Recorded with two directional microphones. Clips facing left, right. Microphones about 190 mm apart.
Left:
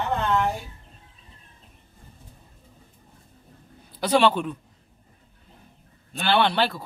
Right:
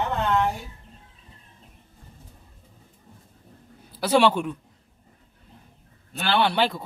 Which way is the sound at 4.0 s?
10° right (ahead or behind).